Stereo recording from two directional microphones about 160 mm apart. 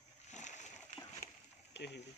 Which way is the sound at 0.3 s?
50° left (ahead or behind).